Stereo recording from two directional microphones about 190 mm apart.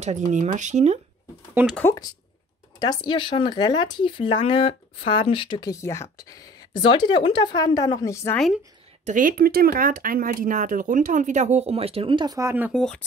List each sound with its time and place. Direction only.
0.0 s speech: 40° right (ahead or behind)
1.5 s speech: 10° right (ahead or behind)
1.8 s speech: 15° left (ahead or behind)
9.0 s speech: 45° right (ahead or behind); by 12.8 s 10° right (ahead or behind)